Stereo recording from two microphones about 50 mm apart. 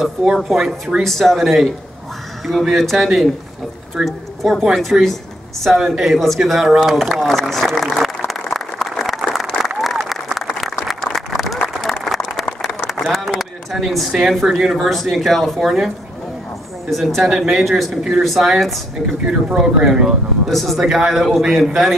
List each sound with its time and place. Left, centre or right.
0.0 s speech: centre
1.0 s a woman's voice: centre
8.3 s applause: centre
13.1 s a sound: centre
14.5 s speech: centre
16.9 s speech: centre
19.2 s speech: centre
20.4 s speech: centre